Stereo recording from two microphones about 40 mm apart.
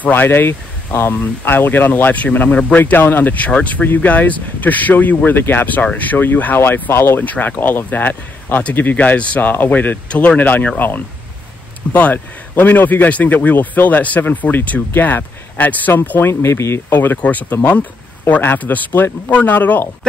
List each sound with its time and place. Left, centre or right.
0.1 s speech: left
2.1 s speech: left
6.5 s speech: left
7.2 s speech: left
8.9 s speech: left
9.5 s speech: left
10.0 s speech: left
11.9 s speech: left
15.9 s speech: left
17.2 s speech: left